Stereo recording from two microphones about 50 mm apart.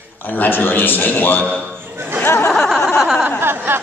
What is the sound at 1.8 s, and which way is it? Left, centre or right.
Speech, right.